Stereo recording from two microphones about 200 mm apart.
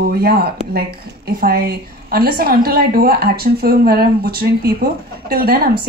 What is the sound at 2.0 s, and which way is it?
Speech, 50° right (ahead or behind).